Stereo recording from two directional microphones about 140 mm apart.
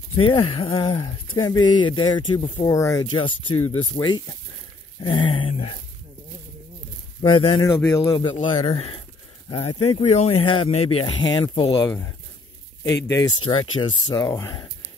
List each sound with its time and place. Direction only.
0.1 s speech: 40° left (ahead or behind)
7.2 s speech: 40° left (ahead or behind)
8.5 s speech: 45° left (ahead or behind)
13.4 s speech: 35° left (ahead or behind)
14.2 s speech: 20° left (ahead or behind)